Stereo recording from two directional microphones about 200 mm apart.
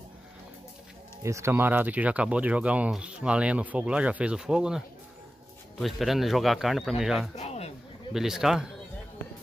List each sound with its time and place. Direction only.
1.2 s a man's voice: 15° right (ahead or behind)
7.3 s a sound: 30° left (ahead or behind)
8.1 s a man's voice: centre (ahead or behind)